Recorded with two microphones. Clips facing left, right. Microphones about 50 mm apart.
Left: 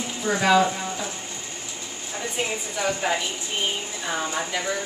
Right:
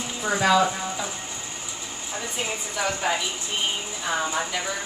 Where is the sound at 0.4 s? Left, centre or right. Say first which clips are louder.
Left 1 dB; centre.